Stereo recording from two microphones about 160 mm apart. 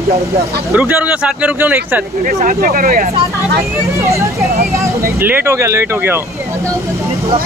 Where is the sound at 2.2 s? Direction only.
55° right (ahead or behind).